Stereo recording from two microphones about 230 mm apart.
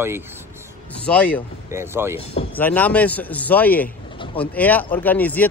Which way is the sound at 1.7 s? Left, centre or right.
Centre.